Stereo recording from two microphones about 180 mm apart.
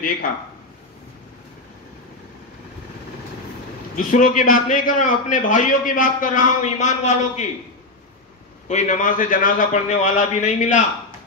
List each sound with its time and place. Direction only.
3.9 s a man's voice: 50° left (ahead or behind)
8.6 s a man's voice: 40° left (ahead or behind)